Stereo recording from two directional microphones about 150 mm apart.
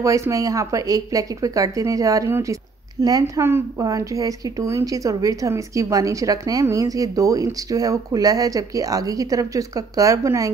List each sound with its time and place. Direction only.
0.0 s a woman's voice: 20° right (ahead or behind)